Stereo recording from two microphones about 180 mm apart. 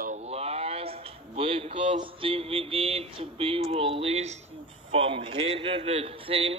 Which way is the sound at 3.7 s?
30° right (ahead or behind).